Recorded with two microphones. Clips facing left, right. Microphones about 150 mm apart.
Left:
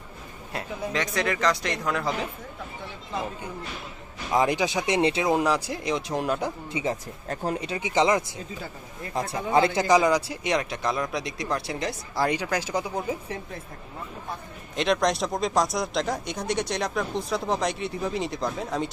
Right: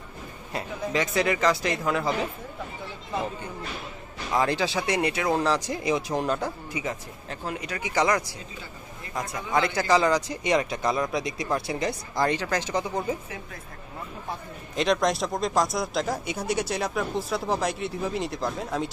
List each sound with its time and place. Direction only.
0.5 s speech: centre (ahead or behind)
4.3 s speech: 15° left (ahead or behind)
5.8 s speech: centre (ahead or behind)
6.7 s speech: 30° left (ahead or behind)
7.2 s speech: 40° left (ahead or behind)
7.6 s speech: 25° left (ahead or behind); by 12.3 s centre (ahead or behind)
12.3 s speech: 10° left (ahead or behind)
14.8 s speech: centre (ahead or behind)